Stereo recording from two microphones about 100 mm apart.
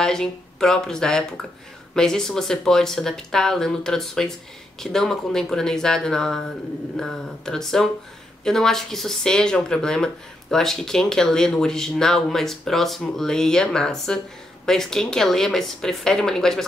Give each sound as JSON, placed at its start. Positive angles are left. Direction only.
{"t": 0.0, "sound": "speech", "side_deg": 5}